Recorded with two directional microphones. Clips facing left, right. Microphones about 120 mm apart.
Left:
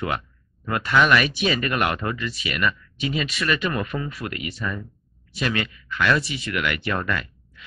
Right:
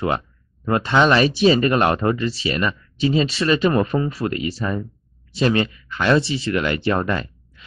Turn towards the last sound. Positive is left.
turn(degrees=-30)  # may be behind; listen again after turning